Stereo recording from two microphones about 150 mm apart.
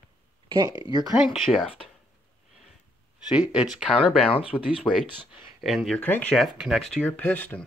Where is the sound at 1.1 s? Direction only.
5° right (ahead or behind).